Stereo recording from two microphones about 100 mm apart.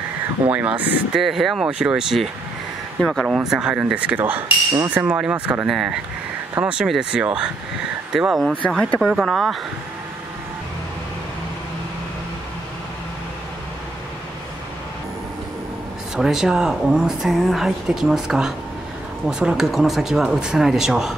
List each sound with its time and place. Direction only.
0.5 s speech: 15° right (ahead or behind)
1.2 s speech: centre (ahead or behind)
3.0 s speech: 5° left (ahead or behind)
3.3 s speech: 5° right (ahead or behind)
8.6 s speech: 10° left (ahead or behind)
16.2 s speech: 5° right (ahead or behind)